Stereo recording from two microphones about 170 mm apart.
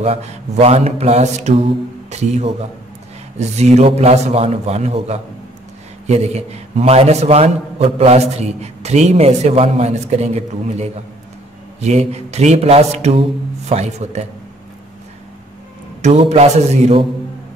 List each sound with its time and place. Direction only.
0.0 s a man's voice: 40° right (ahead or behind)
16.0 s a man's voice: 40° right (ahead or behind)